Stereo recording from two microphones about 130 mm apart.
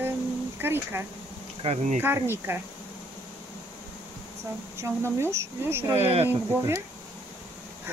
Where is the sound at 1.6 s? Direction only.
55° right (ahead or behind).